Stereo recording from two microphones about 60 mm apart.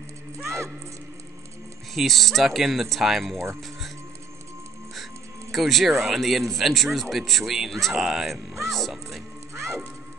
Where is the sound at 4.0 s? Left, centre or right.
Right.